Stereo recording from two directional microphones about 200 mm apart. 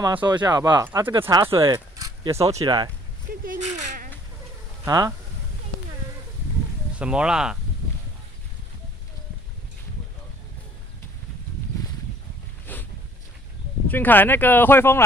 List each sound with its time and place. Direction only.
0.0 s speech: 20° right (ahead or behind)
3.4 s insect: 40° right (ahead or behind)
4.8 s speech: 20° right (ahead or behind)
7.0 s speech: 5° right (ahead or behind)
12.7 s a sound: 10° left (ahead or behind)
13.8 s speech: 10° left (ahead or behind)